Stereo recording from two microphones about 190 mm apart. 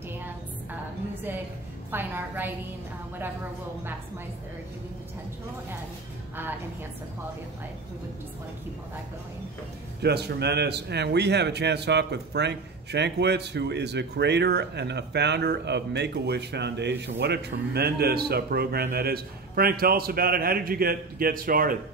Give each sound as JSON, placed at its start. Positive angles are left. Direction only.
{"t": 1.9, "sound": "a woman's voice", "side_deg": -10}
{"t": 10.0, "sound": "a man's voice", "side_deg": -60}